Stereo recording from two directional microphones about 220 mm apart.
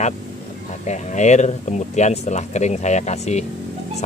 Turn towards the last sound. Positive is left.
turn(degrees=30)  # may be behind; listen again after turning